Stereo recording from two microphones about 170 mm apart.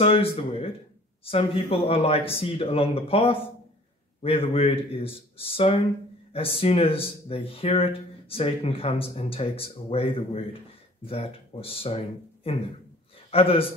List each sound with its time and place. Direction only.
0.0 s speech: 35° left (ahead or behind)
13.3 s speech: 35° left (ahead or behind)